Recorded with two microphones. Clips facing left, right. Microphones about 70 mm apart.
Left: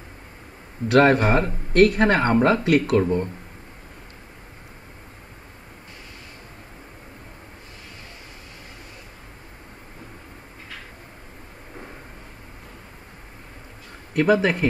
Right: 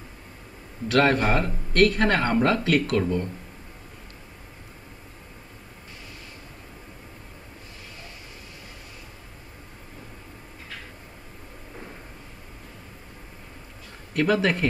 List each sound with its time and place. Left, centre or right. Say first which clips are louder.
0.9 s speech: left 4 dB; left
14.1 s speech: left 3 dB; centre